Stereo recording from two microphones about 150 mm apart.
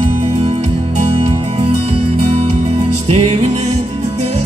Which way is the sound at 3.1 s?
45° right (ahead or behind).